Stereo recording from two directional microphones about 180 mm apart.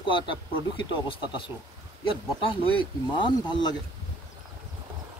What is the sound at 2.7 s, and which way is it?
Speech, 25° left (ahead or behind).